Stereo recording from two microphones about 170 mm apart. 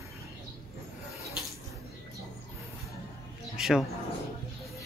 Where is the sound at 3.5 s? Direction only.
5° right (ahead or behind).